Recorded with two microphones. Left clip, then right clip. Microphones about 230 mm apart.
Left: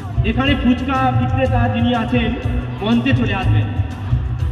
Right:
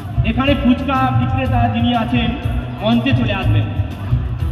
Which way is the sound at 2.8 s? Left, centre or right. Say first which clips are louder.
Right 1 dB; left.